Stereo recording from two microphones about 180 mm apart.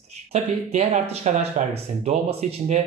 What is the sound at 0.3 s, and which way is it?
Speech, 35° right (ahead or behind).